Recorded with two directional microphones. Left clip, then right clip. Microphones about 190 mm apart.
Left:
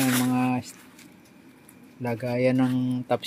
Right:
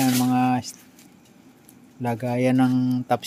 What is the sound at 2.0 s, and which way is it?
Speech, 20° right (ahead or behind).